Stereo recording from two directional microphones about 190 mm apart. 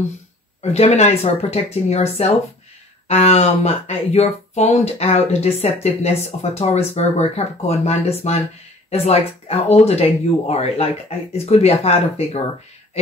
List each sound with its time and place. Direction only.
0.6 s speech: 35° left (ahead or behind)